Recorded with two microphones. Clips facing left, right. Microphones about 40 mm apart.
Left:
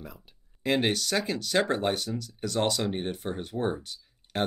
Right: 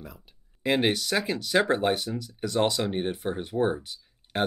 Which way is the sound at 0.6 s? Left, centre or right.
Centre.